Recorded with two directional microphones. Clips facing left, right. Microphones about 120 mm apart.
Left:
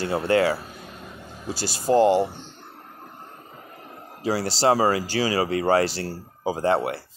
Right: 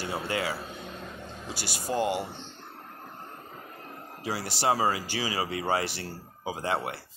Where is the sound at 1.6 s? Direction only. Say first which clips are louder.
Left 6 dB; 15° right (ahead or behind).